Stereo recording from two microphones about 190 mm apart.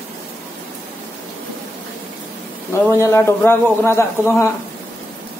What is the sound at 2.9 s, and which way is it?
A man's voice, 15° left (ahead or behind).